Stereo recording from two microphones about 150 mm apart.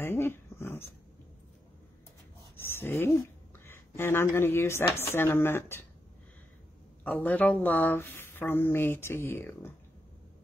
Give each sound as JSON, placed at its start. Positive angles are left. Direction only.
{"t": 0.0, "sound": "dog", "side_deg": 15}
{"t": 2.7, "sound": "speech", "side_deg": 15}
{"t": 7.1, "sound": "speech", "side_deg": 10}